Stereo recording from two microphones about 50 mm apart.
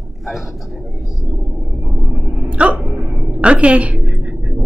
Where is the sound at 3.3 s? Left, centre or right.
Right.